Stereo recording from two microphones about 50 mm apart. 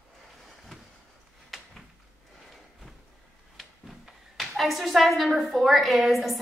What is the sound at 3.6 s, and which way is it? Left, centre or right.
A woman's voice, centre.